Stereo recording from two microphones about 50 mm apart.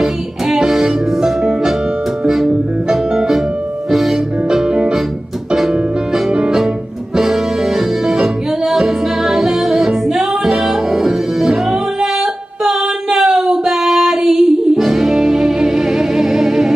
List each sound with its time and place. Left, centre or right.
0.0 s music: centre
4.6 s music: centre
7.2 s music: centre